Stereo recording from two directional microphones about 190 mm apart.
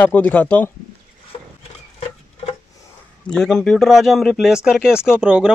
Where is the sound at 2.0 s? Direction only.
35° left (ahead or behind).